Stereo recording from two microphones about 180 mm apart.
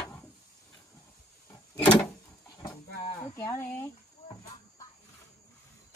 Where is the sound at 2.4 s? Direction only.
20° left (ahead or behind).